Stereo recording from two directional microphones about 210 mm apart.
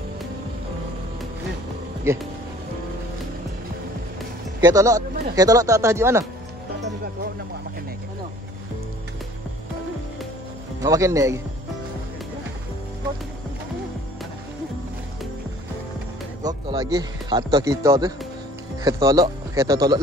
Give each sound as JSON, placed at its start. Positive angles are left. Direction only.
{"t": 4.6, "sound": "a man's voice", "side_deg": -15}
{"t": 10.8, "sound": "a man's voice", "side_deg": -15}
{"t": 16.4, "sound": "a man's voice", "side_deg": -20}